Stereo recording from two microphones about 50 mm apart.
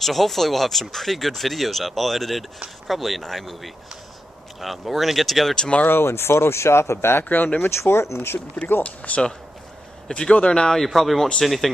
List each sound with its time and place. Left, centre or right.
0.0 s speech: centre
5.6 s speech: left
5.9 s speech: left
7.2 s speech: left
7.7 s speech: left
8.8 s speech: left
10.8 s speech: centre